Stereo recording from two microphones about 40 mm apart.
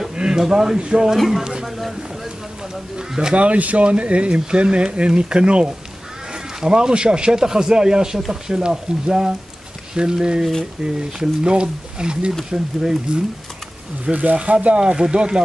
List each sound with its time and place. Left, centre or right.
0.1 s a sound: right
0.4 s speech: centre
1.1 s speech: centre
1.4 s a sound: centre
2.7 s speech: centre
3.3 s speech: right; by 13.2 s centre
14.1 s speech: right